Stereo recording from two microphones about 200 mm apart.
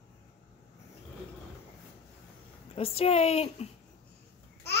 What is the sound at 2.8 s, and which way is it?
Speech, 30° left (ahead or behind).